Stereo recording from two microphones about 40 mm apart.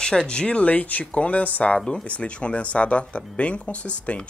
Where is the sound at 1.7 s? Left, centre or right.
Centre.